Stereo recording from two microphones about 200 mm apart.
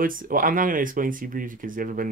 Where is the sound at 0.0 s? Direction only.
45° right (ahead or behind).